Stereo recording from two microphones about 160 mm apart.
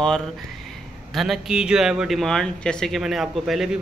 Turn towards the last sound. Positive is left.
turn(degrees=0)  # may be behind; listen again after turning